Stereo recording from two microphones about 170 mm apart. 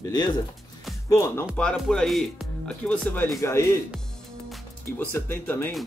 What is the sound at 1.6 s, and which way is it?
Speech, 5° left (ahead or behind).